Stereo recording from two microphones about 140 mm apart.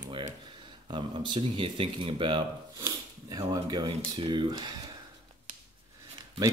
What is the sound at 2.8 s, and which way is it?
Speech, 20° right (ahead or behind).